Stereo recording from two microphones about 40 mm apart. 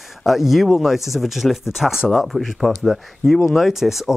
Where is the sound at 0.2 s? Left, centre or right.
Centre.